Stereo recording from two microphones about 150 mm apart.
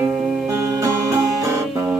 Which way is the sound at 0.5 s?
20° right (ahead or behind).